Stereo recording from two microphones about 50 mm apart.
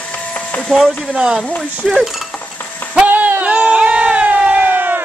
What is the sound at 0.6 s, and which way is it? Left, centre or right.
Speech, centre.